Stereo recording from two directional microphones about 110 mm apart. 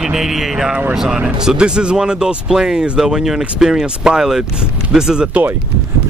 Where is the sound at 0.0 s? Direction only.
5° right (ahead or behind).